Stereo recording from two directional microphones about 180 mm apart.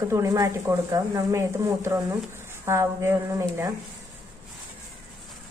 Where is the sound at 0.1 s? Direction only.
15° right (ahead or behind).